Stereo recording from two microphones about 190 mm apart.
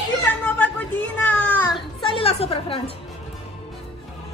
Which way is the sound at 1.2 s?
5° left (ahead or behind).